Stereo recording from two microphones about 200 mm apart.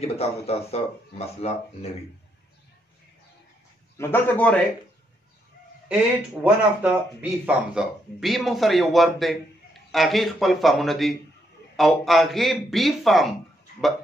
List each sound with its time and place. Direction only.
0.0 s speech: 30° left (ahead or behind)
4.0 s a man's voice: 10° left (ahead or behind)
5.9 s speech: 10° right (ahead or behind)